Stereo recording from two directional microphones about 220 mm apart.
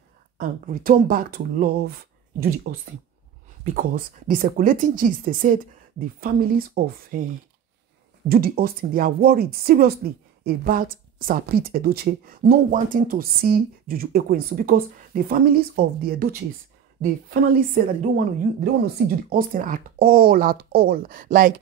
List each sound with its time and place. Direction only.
0.4 s a woman's voice: 40° right (ahead or behind)
8.3 s a woman's voice: 45° right (ahead or behind)